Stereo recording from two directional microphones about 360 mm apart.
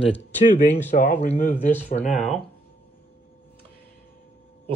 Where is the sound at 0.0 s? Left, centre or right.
Centre.